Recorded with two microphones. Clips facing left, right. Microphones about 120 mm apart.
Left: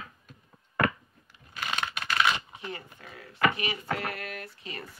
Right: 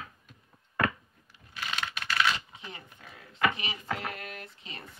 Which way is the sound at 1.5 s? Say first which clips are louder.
Left 3 dB; 55° left (ahead or behind).